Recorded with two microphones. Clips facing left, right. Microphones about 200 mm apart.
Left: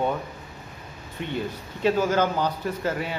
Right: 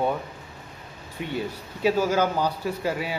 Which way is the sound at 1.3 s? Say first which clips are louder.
Even; 10° right (ahead or behind).